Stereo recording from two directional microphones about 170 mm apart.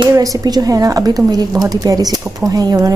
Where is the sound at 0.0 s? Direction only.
20° right (ahead or behind).